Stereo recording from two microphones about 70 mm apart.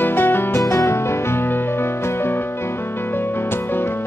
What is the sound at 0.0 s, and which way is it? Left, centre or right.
Music, left.